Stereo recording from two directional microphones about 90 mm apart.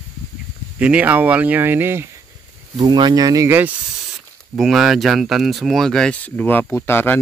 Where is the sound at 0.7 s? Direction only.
15° right (ahead or behind).